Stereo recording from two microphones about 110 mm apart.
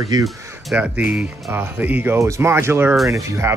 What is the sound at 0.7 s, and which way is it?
Speech, 10° right (ahead or behind).